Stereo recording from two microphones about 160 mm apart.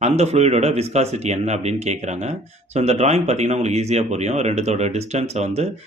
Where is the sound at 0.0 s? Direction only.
45° right (ahead or behind).